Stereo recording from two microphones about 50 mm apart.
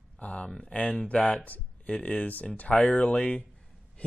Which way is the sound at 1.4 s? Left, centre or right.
Left.